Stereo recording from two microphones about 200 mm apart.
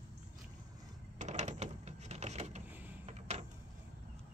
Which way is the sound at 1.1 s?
35° right (ahead or behind).